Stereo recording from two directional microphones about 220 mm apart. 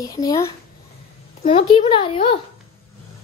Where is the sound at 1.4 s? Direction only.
25° left (ahead or behind).